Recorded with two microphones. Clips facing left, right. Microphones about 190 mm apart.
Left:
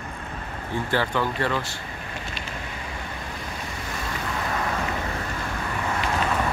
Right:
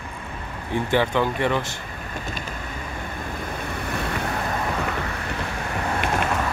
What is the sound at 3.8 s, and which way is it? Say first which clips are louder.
Waves: right 7 dB; 65° right (ahead or behind).